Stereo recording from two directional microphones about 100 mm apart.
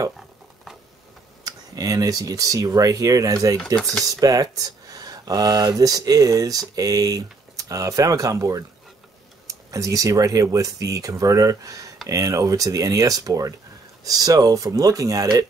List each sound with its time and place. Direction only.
1.4 s speech: 40° right (ahead or behind)